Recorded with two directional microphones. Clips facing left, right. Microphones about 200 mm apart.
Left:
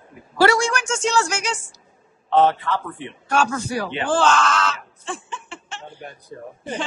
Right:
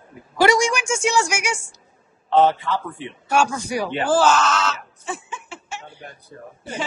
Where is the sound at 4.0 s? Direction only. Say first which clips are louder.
Right 1 dB; 5° right (ahead or behind).